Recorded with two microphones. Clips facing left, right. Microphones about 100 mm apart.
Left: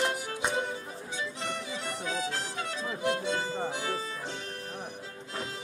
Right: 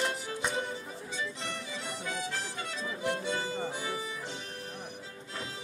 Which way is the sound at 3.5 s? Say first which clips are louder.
Left 2 dB; 25° left (ahead or behind).